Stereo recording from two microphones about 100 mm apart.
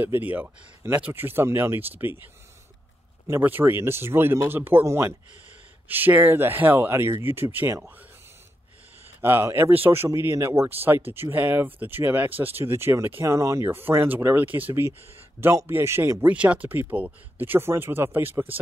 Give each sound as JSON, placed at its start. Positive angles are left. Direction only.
{"t": 0.0, "sound": "speech", "side_deg": -20}
{"t": 3.3, "sound": "speech", "side_deg": -20}
{"t": 9.2, "sound": "speech", "side_deg": -20}